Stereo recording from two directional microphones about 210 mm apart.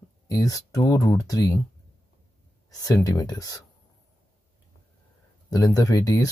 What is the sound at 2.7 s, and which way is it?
Speech, 15° left (ahead or behind).